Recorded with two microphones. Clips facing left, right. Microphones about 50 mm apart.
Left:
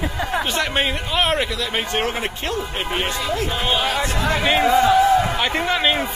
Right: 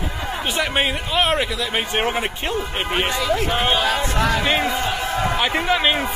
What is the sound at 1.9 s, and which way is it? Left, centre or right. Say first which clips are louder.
Speech: right 1 dB; centre.